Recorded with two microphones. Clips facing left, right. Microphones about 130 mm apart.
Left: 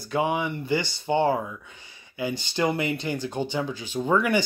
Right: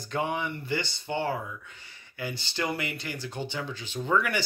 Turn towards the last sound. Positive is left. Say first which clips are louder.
# left 5 dB
turn(degrees=20)  # may be behind; listen again after turning